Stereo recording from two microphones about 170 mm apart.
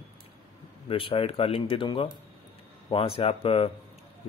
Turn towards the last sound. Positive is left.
turn(degrees=35)  # may be behind; listen again after turning